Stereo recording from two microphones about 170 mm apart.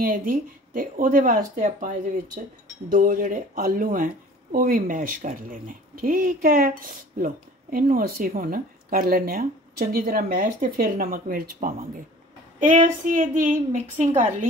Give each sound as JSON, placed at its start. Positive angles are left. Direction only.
{"t": 0.0, "sound": "speech", "side_deg": -55}
{"t": 2.9, "sound": "speech", "side_deg": -50}
{"t": 12.5, "sound": "speech", "side_deg": -50}